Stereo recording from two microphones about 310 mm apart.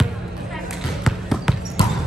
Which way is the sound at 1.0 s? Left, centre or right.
Centre.